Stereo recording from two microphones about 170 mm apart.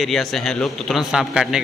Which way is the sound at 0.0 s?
Centre (ahead or behind).